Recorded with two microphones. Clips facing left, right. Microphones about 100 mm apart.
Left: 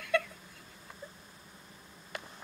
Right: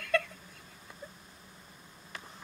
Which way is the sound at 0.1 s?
5° left (ahead or behind).